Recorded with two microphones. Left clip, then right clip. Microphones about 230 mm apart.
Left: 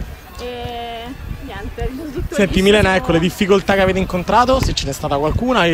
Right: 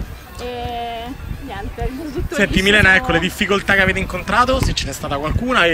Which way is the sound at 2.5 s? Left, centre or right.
Centre.